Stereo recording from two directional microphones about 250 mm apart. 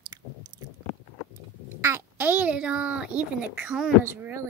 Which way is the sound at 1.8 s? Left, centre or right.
Centre.